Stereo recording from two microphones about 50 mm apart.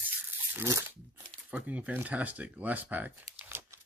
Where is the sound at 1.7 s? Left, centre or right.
Right.